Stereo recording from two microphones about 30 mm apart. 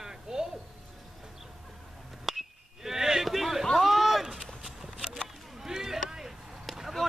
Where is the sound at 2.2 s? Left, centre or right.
Centre.